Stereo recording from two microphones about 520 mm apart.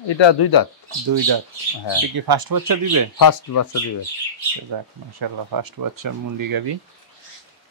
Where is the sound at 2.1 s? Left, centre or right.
Right.